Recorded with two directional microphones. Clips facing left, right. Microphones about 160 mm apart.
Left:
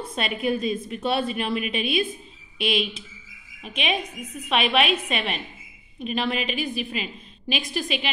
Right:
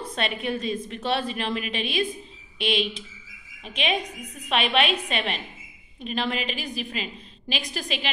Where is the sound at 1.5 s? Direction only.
35° right (ahead or behind).